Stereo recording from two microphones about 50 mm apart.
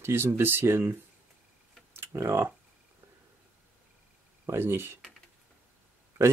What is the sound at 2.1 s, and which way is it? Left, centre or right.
Speech, right.